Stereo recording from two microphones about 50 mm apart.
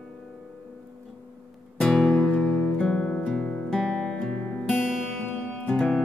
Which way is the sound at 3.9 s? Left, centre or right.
Centre.